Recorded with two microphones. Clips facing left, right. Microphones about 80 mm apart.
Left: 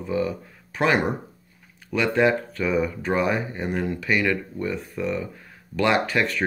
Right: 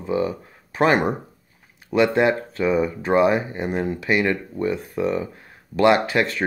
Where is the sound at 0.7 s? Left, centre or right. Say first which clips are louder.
Right 3 dB; right.